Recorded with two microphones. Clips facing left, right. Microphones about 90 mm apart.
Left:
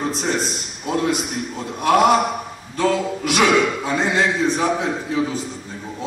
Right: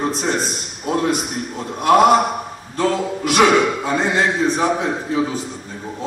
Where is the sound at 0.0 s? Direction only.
40° right (ahead or behind).